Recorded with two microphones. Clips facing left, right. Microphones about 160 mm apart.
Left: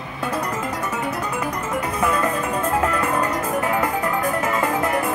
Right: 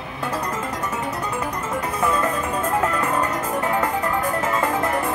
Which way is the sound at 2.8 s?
10° left (ahead or behind).